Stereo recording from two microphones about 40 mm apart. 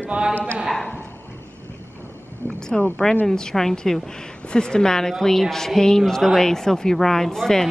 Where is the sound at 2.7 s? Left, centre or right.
Centre.